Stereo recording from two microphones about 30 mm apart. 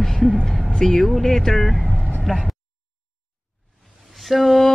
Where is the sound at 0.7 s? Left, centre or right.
Centre.